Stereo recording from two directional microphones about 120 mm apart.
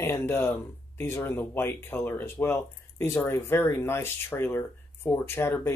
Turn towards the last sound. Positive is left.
turn(degrees=20)  # may be behind; listen again after turning